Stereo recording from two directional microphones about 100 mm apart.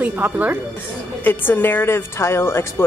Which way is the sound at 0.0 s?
15° right (ahead or behind).